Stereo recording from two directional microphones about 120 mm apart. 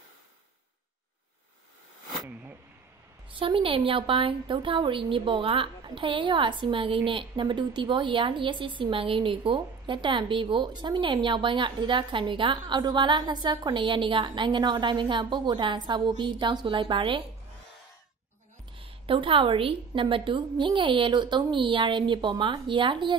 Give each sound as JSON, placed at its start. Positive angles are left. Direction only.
{"t": 3.3, "sound": "a woman's voice", "side_deg": -45}
{"t": 18.8, "sound": "a woman's voice", "side_deg": -45}